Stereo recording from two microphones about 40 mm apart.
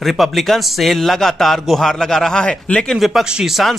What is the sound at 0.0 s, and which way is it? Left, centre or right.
Speech, centre.